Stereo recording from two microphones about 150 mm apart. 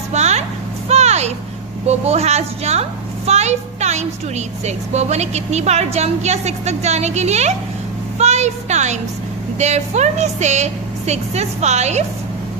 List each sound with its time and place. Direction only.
0.1 s vehicle: 50° right (ahead or behind)
0.8 s a sound: 45° right (ahead or behind)
1.9 s a woman's voice: 45° right (ahead or behind)